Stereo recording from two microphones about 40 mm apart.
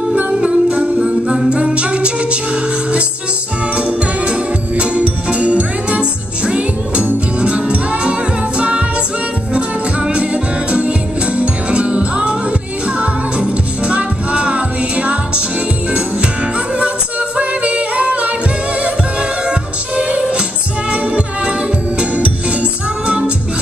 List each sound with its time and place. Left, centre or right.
0.3 s music: right
17.4 s music: right
20.0 s music: right